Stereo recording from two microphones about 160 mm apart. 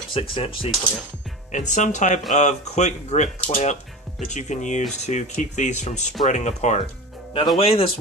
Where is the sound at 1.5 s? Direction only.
50° left (ahead or behind).